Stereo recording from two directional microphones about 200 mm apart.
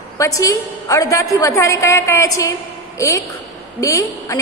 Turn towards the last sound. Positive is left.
turn(degrees=15)  # may be behind; listen again after turning